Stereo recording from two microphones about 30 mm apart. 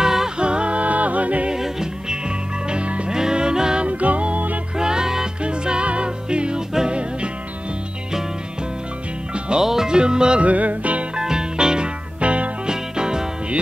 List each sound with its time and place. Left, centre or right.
0.0 s a capella: centre
0.4 s music: right
1.5 s music: right
3.8 s music: right
4.7 s music: right
5.4 s music: right
9.6 s music: centre
9.8 s music: right
10.4 s music: right
11.1 s music: right
12.2 s music: right
12.6 s music: right